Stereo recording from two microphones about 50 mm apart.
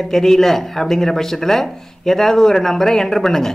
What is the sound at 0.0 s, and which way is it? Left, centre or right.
Speech, centre.